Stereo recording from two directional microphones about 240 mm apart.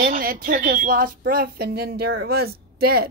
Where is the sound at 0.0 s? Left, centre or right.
Right.